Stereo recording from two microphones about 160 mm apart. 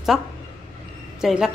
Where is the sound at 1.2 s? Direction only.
5° right (ahead or behind).